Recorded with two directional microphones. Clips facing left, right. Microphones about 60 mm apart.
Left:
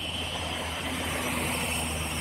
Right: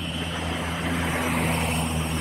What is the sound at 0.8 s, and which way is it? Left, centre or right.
Vehicle, right.